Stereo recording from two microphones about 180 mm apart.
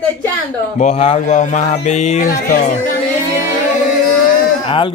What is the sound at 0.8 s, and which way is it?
Speech, 35° left (ahead or behind).